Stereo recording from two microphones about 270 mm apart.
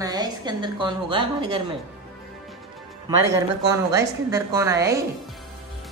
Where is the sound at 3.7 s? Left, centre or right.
Centre.